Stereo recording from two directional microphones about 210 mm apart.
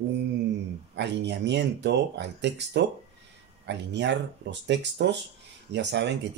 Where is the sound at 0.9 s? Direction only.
55° right (ahead or behind).